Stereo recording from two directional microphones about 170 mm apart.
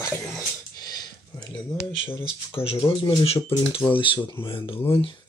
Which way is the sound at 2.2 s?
35° left (ahead or behind).